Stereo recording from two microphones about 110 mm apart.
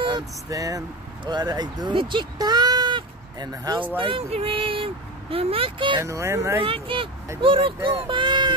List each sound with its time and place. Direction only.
0.1 s speech: 30° right (ahead or behind)
4.0 s speech: 55° right (ahead or behind)
5.9 s speech: 25° right (ahead or behind)
6.6 s speech: 55° right (ahead or behind)